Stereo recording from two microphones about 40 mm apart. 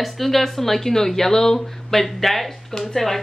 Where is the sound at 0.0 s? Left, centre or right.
Centre.